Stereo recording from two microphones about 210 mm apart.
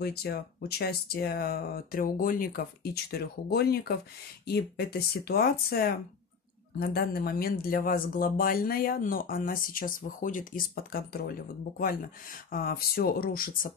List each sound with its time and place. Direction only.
0.0 s speech: 50° left (ahead or behind)
12.4 s speech: 45° left (ahead or behind)